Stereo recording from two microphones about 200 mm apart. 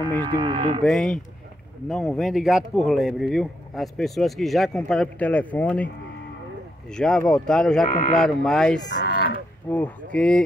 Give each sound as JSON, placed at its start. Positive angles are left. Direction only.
{"t": 0.1, "sound": "speech", "side_deg": -20}
{"t": 0.8, "sound": "speech", "side_deg": 5}
{"t": 6.9, "sound": "speech", "side_deg": 5}
{"t": 8.8, "sound": "livestock", "side_deg": 55}
{"t": 9.7, "sound": "speech", "side_deg": 10}